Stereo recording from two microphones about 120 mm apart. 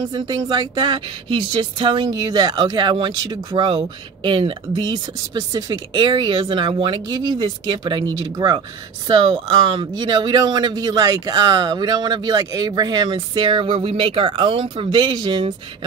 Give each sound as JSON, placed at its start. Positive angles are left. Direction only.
{"t": 0.1, "sound": "speech", "side_deg": -35}